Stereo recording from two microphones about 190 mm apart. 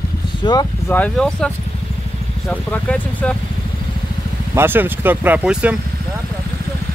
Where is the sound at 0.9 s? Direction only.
5° left (ahead or behind).